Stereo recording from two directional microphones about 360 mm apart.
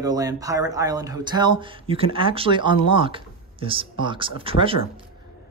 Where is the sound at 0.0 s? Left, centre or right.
Centre.